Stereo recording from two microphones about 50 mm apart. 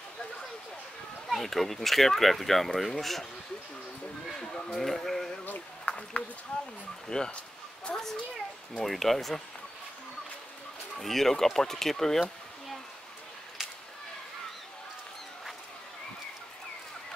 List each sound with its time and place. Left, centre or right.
1.2 s speech: centre
4.4 s speech: centre
4.7 s speech: centre
5.9 s speech: left
7.1 s speech: centre
8.8 s speech: centre
11.0 s speech: centre